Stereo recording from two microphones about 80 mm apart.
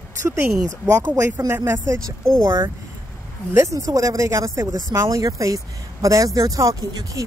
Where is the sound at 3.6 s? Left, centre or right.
Right.